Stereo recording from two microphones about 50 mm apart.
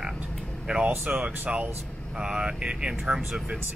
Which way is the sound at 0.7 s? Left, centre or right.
Right.